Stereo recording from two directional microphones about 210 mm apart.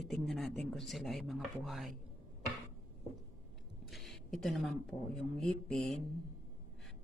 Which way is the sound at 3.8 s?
Centre (ahead or behind).